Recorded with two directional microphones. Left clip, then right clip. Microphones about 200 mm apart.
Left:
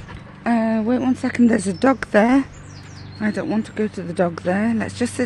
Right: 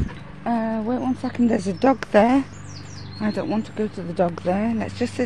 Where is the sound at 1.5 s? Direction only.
15° left (ahead or behind).